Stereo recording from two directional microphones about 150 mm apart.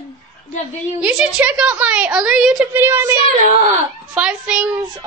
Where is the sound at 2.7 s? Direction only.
15° right (ahead or behind).